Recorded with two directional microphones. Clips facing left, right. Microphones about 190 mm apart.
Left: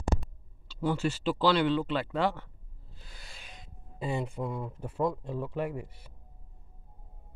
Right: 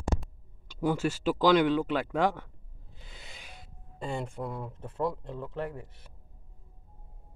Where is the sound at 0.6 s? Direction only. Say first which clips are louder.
Right 1 dB; 15° right (ahead or behind).